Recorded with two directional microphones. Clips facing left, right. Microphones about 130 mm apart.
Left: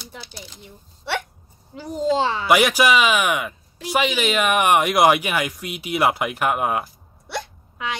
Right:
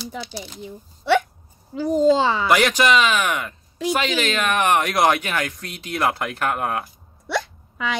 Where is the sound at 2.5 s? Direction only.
10° left (ahead or behind).